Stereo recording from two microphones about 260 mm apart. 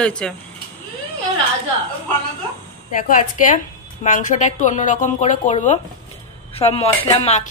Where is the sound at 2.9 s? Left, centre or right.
Left.